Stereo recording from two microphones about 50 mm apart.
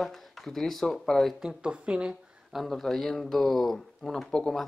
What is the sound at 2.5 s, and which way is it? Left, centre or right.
Speech, centre.